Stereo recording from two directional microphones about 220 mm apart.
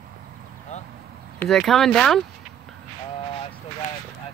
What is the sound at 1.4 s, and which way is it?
Speech, centre (ahead or behind).